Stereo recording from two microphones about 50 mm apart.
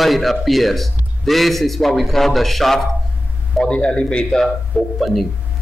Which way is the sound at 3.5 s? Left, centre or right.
Left.